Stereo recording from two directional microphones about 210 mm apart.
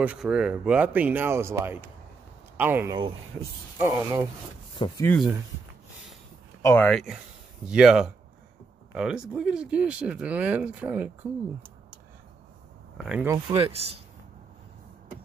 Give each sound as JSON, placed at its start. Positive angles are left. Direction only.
{"t": 0.0, "sound": "speech", "side_deg": -5}
{"t": 4.7, "sound": "speech", "side_deg": 20}
{"t": 6.6, "sound": "speech", "side_deg": 10}
{"t": 12.9, "sound": "speech", "side_deg": -5}
{"t": 13.5, "sound": "speech", "side_deg": -25}